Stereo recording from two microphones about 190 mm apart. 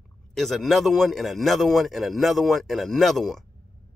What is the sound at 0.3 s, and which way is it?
A man's voice, centre (ahead or behind).